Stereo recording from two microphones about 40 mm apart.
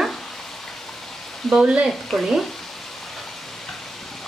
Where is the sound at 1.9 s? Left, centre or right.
Centre.